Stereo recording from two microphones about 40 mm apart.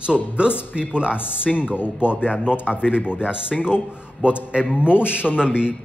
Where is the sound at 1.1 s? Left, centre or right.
Left.